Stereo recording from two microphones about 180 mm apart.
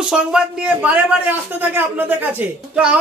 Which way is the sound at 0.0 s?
5° right (ahead or behind).